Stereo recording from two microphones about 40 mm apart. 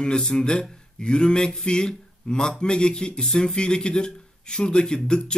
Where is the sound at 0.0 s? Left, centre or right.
Centre.